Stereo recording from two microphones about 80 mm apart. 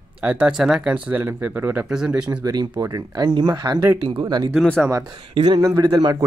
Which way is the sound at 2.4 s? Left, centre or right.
Right.